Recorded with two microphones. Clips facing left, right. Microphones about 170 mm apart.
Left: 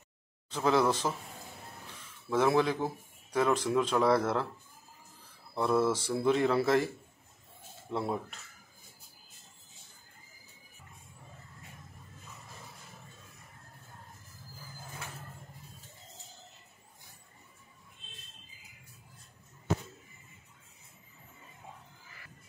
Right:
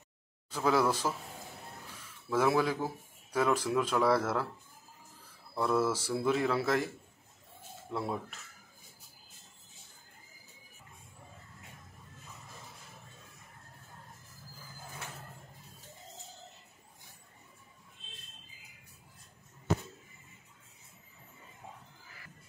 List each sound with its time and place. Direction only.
0.7 s speech: 5° right (ahead or behind)
2.3 s speech: 5° right (ahead or behind)
5.5 s speech: centre (ahead or behind)
7.9 s speech: centre (ahead or behind)